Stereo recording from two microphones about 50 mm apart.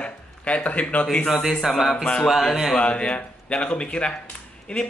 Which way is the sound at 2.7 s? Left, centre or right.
Left.